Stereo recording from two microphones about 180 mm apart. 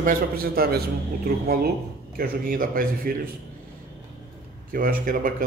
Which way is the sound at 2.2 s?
50° right (ahead or behind).